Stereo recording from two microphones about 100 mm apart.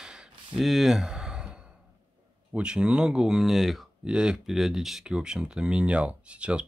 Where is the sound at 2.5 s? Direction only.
10° right (ahead or behind).